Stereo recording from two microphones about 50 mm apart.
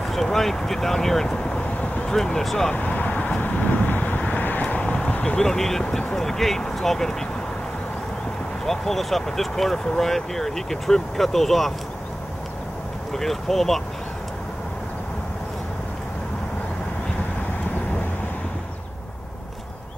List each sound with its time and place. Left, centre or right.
0.0 s speech: centre; by 2.0 s left
2.0 s speech: centre
2.7 s vehicle: left
4.9 s speech: left
8.6 s speech: centre
13.1 s speech: centre